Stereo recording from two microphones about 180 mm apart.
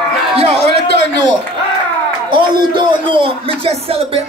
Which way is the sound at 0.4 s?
35° right (ahead or behind).